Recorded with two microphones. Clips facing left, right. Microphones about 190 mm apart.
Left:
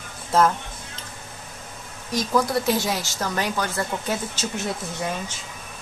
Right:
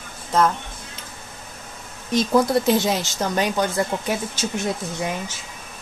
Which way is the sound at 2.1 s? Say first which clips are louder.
Right 4 dB; 25° right (ahead or behind).